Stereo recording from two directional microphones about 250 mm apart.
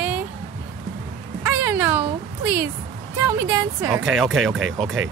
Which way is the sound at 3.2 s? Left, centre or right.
Centre.